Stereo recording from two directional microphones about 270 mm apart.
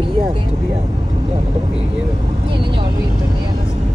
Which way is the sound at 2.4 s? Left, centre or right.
Centre.